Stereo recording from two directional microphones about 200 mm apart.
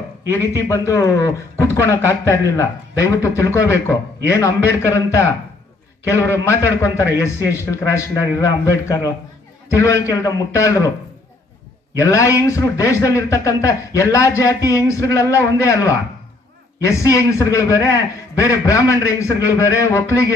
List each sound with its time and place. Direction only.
0.3 s a man's voice: 15° left (ahead or behind)
12.0 s a man's voice: 15° left (ahead or behind)